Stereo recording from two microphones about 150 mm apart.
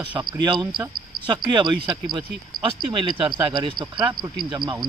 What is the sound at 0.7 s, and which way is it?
Speech, 30° right (ahead or behind).